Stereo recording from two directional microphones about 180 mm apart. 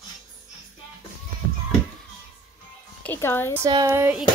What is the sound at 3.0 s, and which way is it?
Speech, 10° left (ahead or behind).